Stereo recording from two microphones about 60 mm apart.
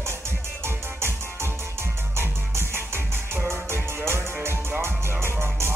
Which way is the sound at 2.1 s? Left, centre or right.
Right.